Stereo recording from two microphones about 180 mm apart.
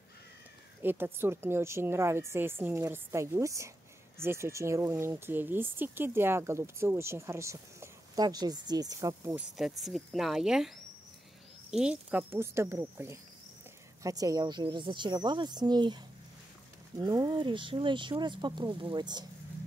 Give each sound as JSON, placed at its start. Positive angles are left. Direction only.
{"t": 0.8, "sound": "speech", "side_deg": -10}
{"t": 9.6, "sound": "speech", "side_deg": 0}
{"t": 11.7, "sound": "speech", "side_deg": -5}
{"t": 17.0, "sound": "speech", "side_deg": -25}